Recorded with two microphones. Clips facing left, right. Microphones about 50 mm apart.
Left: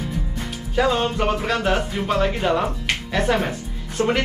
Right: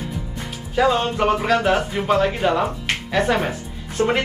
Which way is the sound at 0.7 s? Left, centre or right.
Centre.